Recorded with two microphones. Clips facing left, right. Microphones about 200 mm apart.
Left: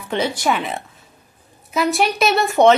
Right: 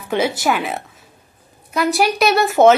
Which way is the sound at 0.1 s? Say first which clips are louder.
Right 2 dB; 5° right (ahead or behind).